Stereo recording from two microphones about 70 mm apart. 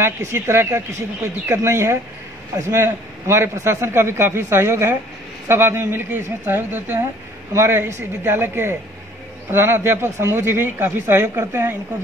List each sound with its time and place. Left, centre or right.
0.0 s a man's voice: right